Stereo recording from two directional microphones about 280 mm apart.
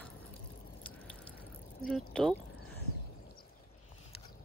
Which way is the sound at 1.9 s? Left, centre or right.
Centre.